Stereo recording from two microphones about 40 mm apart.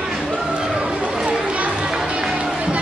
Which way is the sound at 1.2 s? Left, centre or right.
Right.